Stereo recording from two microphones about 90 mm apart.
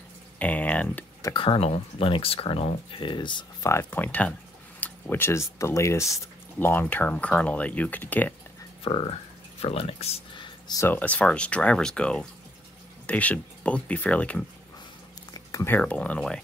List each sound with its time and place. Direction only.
0.4 s speech: 15° left (ahead or behind)
1.3 s speech: 85° left; by 3.4 s 60° left (ahead or behind)
3.9 s speech: 20° left (ahead or behind)
6.7 s speech: 20° left (ahead or behind)
8.8 s speech: 90° left; by 10.8 s 60° left (ahead or behind)
11.0 s speech: 15° left (ahead or behind)
15.8 s speech: 15° left (ahead or behind)